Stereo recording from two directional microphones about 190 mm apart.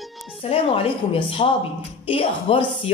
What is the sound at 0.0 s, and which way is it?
Music, centre (ahead or behind).